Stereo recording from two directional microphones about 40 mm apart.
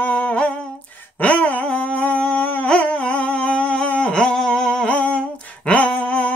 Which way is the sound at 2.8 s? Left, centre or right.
Left.